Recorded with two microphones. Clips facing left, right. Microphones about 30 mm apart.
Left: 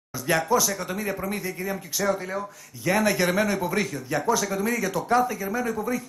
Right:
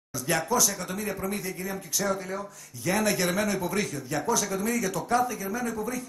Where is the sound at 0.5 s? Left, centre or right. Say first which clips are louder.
Left 3 dB; centre.